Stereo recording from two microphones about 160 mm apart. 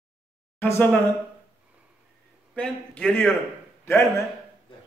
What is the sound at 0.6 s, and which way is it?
Speech, 10° left (ahead or behind).